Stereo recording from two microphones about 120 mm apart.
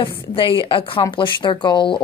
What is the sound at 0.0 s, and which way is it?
A woman's voice, 45° left (ahead or behind).